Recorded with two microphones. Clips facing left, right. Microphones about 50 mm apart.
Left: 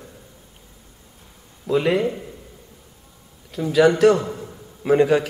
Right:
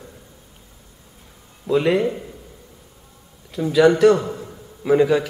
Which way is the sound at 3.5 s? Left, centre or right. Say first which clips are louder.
Right 1 dB; centre.